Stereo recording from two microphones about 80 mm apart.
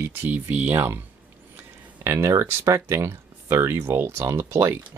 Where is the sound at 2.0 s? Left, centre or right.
Right.